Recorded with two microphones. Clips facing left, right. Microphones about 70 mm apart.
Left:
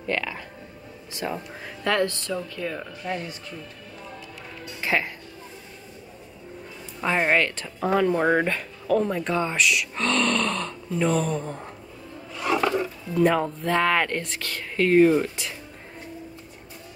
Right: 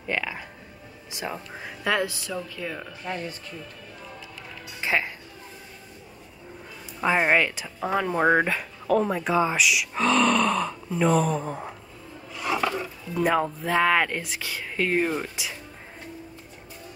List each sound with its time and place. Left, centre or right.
0.0 s speech: centre
4.8 s speech: centre
7.0 s speech: centre
12.4 s a sound: centre
13.1 s speech: centre